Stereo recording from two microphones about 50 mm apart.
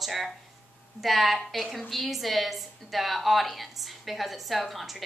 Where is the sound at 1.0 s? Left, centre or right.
Centre.